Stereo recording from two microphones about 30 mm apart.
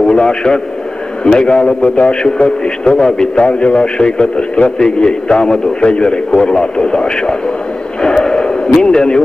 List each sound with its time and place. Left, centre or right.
0.0 s a man's voice: left
5.8 s a man's voice: left
8.0 s a sound: left
8.7 s a man's voice: left